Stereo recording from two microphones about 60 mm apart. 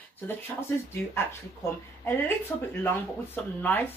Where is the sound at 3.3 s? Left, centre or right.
Left.